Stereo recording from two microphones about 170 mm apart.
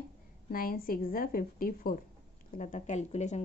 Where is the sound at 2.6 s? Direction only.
45° left (ahead or behind).